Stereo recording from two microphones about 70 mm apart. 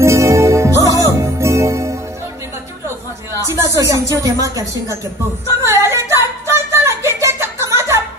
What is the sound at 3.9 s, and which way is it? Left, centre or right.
A woman's voice, right.